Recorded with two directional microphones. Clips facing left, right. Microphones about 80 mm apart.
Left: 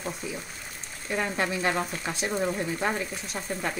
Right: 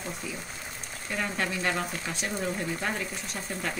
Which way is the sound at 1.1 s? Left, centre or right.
Centre.